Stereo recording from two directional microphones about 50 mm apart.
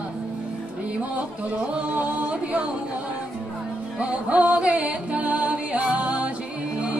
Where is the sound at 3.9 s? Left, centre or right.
Right.